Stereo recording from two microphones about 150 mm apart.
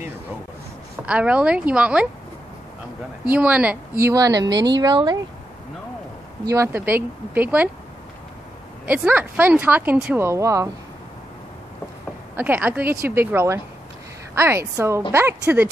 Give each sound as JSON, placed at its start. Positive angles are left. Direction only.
{"t": 1.0, "sound": "a woman's voice", "side_deg": -5}
{"t": 3.3, "sound": "a woman's voice", "side_deg": -10}
{"t": 3.9, "sound": "speech", "side_deg": -20}
{"t": 6.4, "sound": "a woman's voice", "side_deg": -20}
{"t": 8.8, "sound": "a woman's voice", "side_deg": -10}
{"t": 10.1, "sound": "speech", "side_deg": -20}
{"t": 12.4, "sound": "a woman's voice", "side_deg": -10}